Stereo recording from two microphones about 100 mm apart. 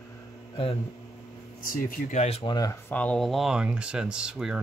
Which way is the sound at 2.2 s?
90° left.